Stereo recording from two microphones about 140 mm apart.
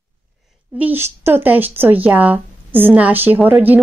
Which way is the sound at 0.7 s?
15° right (ahead or behind).